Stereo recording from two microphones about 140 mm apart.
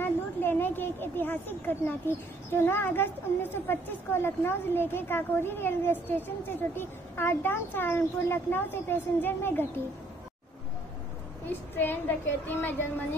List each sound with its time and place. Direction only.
0.0 s speech: 15° left (ahead or behind)
11.4 s speech: 15° left (ahead or behind)